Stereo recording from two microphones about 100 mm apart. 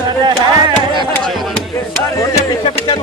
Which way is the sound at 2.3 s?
40° left (ahead or behind).